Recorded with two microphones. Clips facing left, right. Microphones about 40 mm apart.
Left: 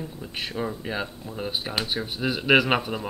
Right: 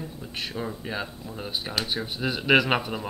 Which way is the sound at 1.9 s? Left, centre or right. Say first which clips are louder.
Left 1 dB; centre.